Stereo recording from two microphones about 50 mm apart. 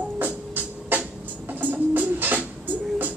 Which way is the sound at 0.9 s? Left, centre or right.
Right.